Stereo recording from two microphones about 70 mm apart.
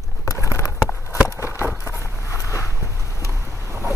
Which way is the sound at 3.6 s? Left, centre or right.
Right.